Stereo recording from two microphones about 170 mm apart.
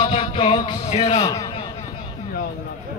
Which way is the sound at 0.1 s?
30° left (ahead or behind).